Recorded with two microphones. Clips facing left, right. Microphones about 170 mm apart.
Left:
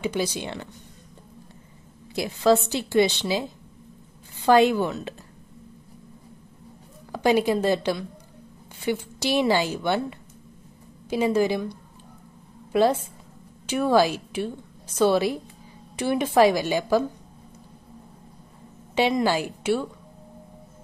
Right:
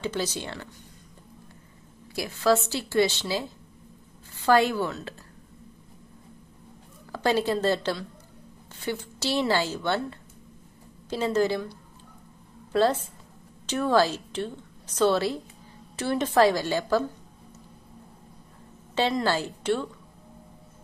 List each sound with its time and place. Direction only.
0.0 s a woman's voice: 10° left (ahead or behind)
2.1 s a woman's voice: 20° left (ahead or behind)
7.1 s a woman's voice: 15° left (ahead or behind)
13.7 s a woman's voice: 10° left (ahead or behind)
18.9 s a woman's voice: 15° left (ahead or behind)